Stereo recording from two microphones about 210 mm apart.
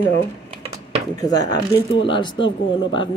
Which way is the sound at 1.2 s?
20° left (ahead or behind).